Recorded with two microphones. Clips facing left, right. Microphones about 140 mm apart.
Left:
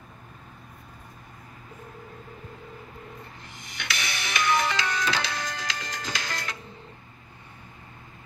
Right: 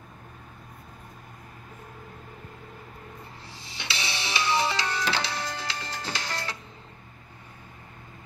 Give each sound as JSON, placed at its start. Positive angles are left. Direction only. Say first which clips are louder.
{"t": 3.5, "sound": "music", "louder": "left 1 dB", "side_deg": -30}